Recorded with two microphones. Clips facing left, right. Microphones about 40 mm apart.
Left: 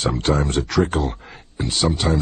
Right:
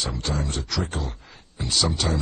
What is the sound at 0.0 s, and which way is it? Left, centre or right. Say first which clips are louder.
Speech: left 8 dB; left.